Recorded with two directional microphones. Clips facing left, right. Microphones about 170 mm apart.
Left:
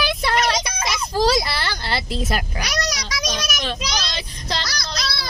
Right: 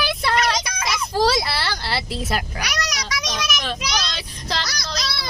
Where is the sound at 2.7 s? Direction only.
35° left (ahead or behind).